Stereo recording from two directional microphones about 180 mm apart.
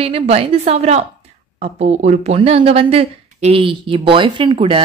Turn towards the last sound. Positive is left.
turn(degrees=-30)  # may be behind; listen again after turning